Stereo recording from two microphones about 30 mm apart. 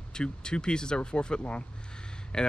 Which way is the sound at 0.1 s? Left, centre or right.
Left.